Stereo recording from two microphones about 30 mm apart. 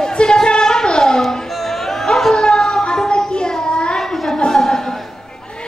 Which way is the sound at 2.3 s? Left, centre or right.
Left.